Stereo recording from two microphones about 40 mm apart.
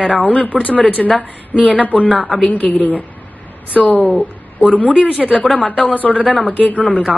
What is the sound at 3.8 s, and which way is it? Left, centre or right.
Speech, centre.